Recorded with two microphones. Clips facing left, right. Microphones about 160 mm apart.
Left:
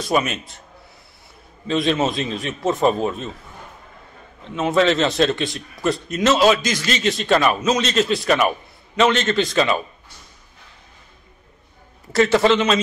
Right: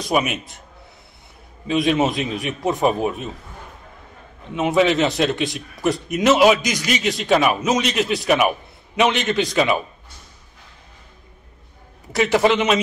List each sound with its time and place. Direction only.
0.1 s a man's voice: 15° right (ahead or behind)
1.7 s a man's voice: 15° right (ahead or behind)
4.5 s a man's voice: 15° right (ahead or behind)
12.1 s a man's voice: 15° right (ahead or behind)